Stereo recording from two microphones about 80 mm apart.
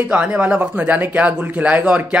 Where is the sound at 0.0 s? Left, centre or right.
Centre.